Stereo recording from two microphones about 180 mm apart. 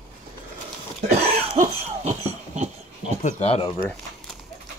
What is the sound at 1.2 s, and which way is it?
Cough, 40° right (ahead or behind).